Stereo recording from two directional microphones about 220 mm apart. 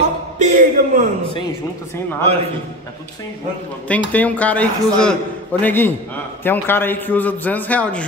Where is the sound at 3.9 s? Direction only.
5° left (ahead or behind).